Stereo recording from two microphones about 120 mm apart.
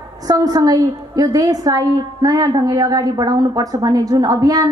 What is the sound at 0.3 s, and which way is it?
A woman's voice, 30° right (ahead or behind).